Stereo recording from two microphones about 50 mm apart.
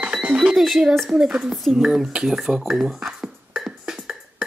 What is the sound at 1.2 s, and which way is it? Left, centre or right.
Speech, right.